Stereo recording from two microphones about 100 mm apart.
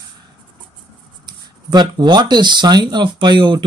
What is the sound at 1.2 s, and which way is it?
Speech, 45° right (ahead or behind).